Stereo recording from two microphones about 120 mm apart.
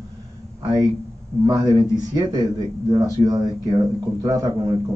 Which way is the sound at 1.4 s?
30° right (ahead or behind).